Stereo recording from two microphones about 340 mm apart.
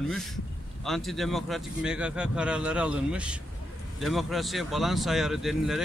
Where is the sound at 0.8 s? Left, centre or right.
Centre.